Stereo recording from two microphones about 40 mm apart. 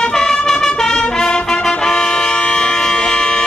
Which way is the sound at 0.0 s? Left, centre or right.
Centre.